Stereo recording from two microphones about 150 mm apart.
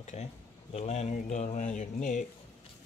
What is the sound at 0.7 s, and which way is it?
Speech, 45° left (ahead or behind).